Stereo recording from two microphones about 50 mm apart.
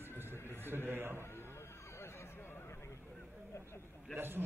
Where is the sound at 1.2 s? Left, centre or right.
Left.